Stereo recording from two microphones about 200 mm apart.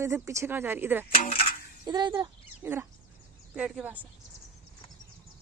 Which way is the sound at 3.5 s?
5° right (ahead or behind).